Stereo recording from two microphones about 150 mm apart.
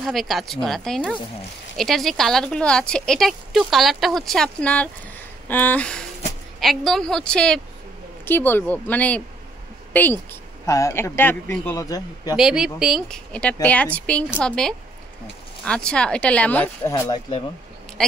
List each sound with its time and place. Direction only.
0.0 s a woman's voice: centre (ahead or behind); by 12.4 s 25° left (ahead or behind)
12.4 s a woman's voice: 5° right (ahead or behind)
16.9 s speech: 25° left (ahead or behind)